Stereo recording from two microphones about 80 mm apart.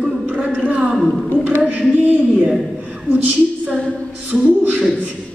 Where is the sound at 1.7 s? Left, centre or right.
Centre.